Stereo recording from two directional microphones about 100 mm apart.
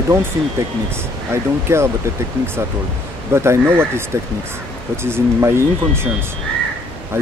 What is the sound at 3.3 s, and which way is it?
Speech, 25° right (ahead or behind).